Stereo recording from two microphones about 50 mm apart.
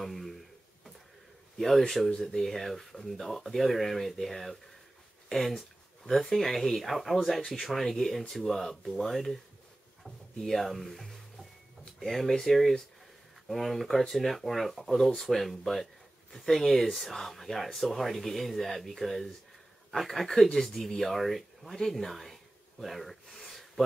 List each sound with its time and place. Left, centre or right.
0.0 s a sound: centre
2.0 s speech: centre
10.4 s speech: centre